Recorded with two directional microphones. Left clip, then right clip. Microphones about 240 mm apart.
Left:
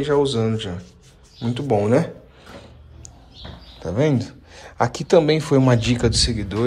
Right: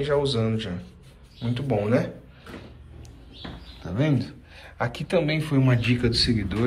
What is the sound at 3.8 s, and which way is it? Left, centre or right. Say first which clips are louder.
Speech: left 6 dB; left.